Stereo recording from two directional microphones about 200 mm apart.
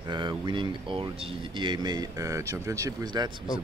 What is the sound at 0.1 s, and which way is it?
Speech, 20° right (ahead or behind).